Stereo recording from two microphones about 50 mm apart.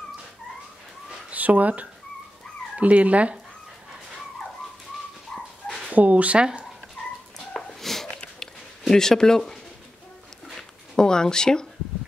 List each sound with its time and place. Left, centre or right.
1.3 s speech: right
5.3 s dog: centre
5.9 s speech: right
7.5 s a sound: centre
11.0 s speech: centre